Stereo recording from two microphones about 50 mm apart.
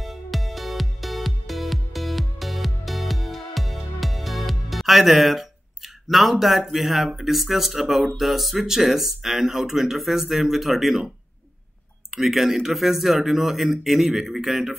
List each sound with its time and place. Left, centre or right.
0.0 s music: centre
6.0 s speech: centre
12.2 s speech: centre